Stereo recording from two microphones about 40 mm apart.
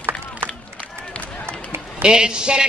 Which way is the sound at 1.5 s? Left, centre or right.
Right.